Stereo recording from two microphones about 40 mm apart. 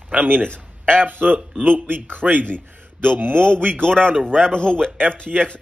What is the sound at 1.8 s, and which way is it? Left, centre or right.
Speech, right.